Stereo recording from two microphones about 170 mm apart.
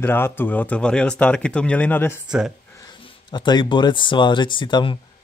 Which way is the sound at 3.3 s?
25° left (ahead or behind).